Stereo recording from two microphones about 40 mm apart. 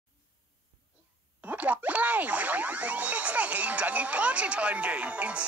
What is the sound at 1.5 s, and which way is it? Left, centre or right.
Boing, right.